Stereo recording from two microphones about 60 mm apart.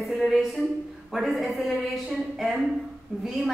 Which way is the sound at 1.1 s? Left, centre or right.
Centre.